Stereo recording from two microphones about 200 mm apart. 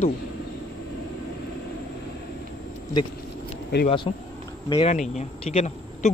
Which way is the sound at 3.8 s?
25° left (ahead or behind).